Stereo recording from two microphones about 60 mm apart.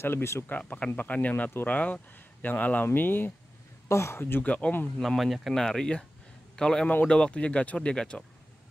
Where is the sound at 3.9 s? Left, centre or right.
Left.